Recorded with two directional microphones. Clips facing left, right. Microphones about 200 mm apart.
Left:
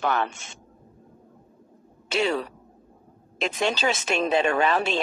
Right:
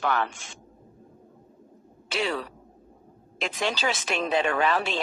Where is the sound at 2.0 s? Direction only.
25° left (ahead or behind).